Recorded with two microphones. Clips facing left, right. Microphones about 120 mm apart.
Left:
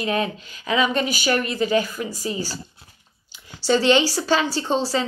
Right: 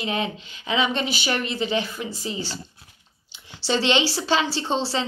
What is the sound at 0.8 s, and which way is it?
A woman's voice, 45° left (ahead or behind).